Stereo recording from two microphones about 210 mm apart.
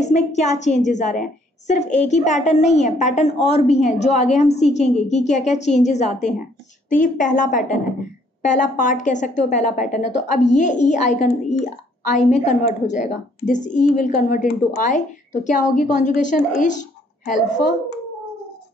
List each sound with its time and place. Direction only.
0.0 s a woman's voice: 35° left (ahead or behind)